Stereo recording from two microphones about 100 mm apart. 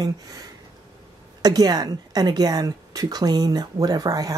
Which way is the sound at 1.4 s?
40° right (ahead or behind).